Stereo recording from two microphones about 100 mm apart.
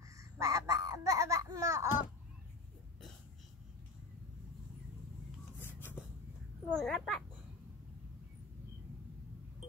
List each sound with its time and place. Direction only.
0.2 s babbling: 30° right (ahead or behind)
5.6 s a sound: 20° left (ahead or behind)
6.7 s a child's voice: 5° left (ahead or behind)